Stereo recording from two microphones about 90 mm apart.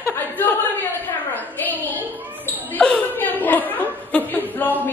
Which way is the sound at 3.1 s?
20° left (ahead or behind).